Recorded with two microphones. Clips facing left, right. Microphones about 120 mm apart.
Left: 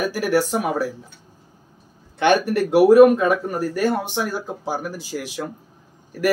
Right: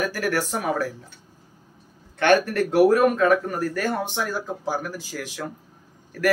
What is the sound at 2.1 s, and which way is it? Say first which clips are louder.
Speech: left 1 dB; 15° left (ahead or behind).